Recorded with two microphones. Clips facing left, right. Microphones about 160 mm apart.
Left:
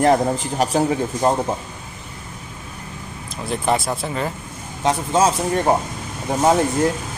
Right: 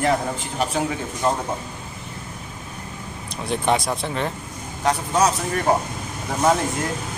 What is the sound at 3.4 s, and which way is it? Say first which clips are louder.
Speech: left 1 dB; centre (ahead or behind).